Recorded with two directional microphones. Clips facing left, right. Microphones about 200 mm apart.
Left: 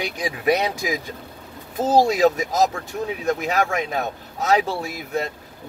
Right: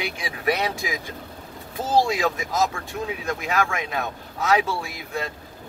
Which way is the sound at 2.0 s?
40° left (ahead or behind).